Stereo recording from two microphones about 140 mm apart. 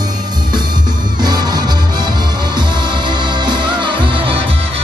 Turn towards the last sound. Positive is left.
turn(degrees=-40)  # may be behind; listen again after turning